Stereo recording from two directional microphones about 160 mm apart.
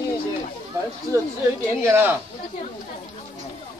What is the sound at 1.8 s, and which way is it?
Speech, 15° right (ahead or behind).